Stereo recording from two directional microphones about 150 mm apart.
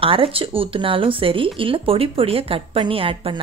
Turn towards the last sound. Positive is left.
turn(degrees=-35)  # may be behind; listen again after turning